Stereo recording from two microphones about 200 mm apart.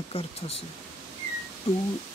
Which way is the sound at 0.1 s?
30° left (ahead or behind).